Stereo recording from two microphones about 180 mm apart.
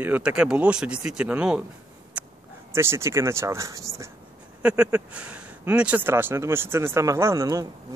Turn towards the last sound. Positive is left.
turn(degrees=-15)  # may be behind; listen again after turning